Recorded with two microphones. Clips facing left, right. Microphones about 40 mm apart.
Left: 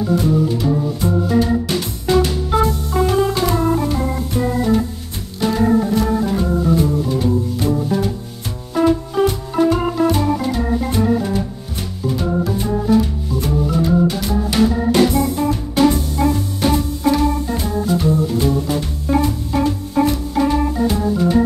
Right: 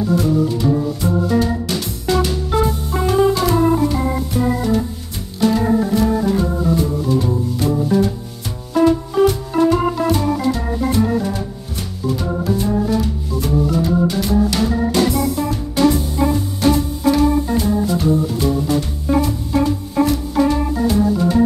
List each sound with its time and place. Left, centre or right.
0.6 s organ: centre
2.7 s music: centre
3.4 s organ: centre
8.7 s music: centre
10.9 s organ: centre
14.9 s music: left
16.0 s music: centre
16.6 s organ: centre